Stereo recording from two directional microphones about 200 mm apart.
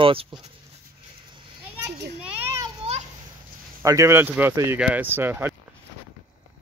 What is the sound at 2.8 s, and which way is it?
Children playing, 30° right (ahead or behind).